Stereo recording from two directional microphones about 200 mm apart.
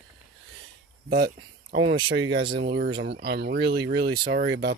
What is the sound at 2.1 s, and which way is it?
Speech, 65° right (ahead or behind).